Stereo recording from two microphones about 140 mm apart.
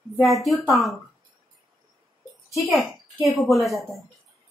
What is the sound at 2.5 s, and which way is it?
A woman's voice, centre (ahead or behind).